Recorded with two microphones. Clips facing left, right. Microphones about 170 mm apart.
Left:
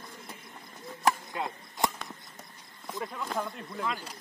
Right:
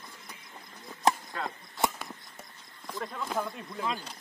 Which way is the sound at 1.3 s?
20° left (ahead or behind).